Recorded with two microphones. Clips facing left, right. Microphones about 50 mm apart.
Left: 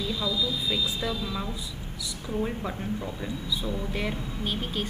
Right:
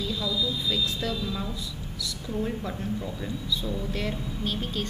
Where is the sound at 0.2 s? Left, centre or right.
Left.